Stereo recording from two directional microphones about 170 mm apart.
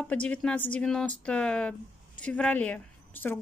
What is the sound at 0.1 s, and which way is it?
A woman's voice, 5° left (ahead or behind).